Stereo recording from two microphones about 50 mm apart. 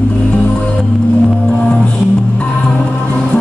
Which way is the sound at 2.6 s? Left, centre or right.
Centre.